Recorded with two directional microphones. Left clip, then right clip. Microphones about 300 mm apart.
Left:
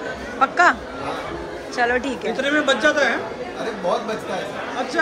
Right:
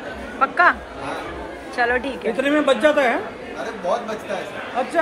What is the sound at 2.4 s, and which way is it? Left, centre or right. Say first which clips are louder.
Speech: right 1 dB; right.